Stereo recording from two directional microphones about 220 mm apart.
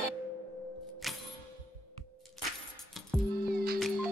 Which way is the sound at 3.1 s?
Centre (ahead or behind).